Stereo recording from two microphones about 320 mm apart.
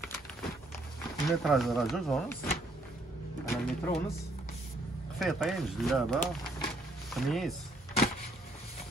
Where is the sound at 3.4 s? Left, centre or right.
Centre.